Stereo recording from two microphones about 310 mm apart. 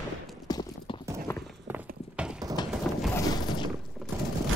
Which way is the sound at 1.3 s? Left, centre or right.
Centre.